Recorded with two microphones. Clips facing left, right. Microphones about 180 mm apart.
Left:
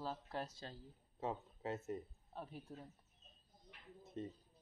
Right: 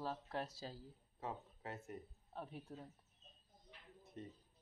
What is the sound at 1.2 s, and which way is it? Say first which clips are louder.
Speech: left 5 dB; 25° left (ahead or behind).